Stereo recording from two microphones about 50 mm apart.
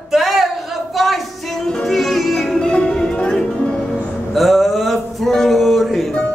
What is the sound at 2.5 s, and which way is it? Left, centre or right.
Music, centre.